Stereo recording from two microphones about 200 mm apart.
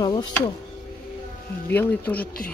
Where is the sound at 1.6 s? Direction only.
10° left (ahead or behind).